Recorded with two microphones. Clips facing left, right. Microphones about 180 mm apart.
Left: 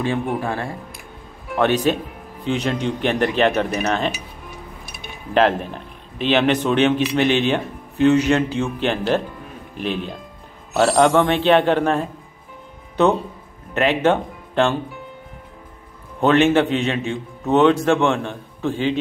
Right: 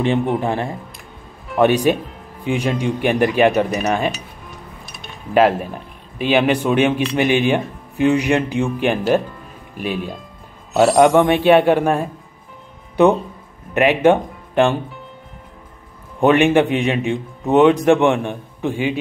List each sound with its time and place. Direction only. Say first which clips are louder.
0.0 s a man's voice: right 4 dB; 20° right (ahead or behind)
4.9 s chink: even; 5° left (ahead or behind)
5.3 s a man's voice: right 3 dB; 10° right (ahead or behind)
11.0 s a man's voice: right 3 dB; 15° right (ahead or behind)
16.2 s a man's voice: right 2 dB; 15° right (ahead or behind)